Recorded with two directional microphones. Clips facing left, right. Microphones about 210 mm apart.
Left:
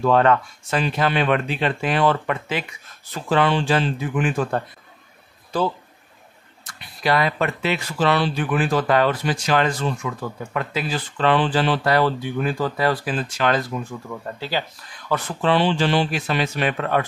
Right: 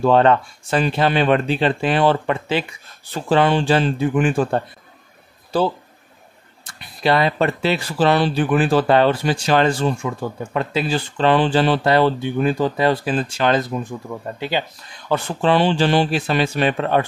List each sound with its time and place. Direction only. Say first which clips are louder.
0.0 s speech: right 3 dB; 30° right (ahead or behind)